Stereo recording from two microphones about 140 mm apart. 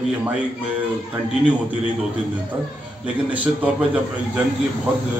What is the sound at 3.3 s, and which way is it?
Speech, 10° right (ahead or behind).